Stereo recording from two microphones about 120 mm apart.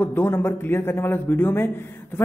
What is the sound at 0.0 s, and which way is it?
Speech, 15° left (ahead or behind).